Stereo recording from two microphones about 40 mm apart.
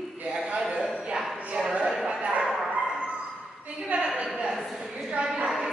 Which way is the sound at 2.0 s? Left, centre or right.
Right.